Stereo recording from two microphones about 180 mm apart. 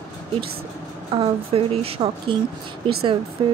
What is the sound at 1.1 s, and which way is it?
Speech, 30° right (ahead or behind).